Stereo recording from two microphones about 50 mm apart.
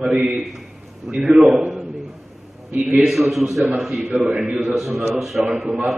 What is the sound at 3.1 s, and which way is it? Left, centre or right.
A man's voice, centre.